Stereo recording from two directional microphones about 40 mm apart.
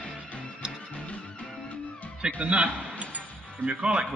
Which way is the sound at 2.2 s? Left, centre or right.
Right.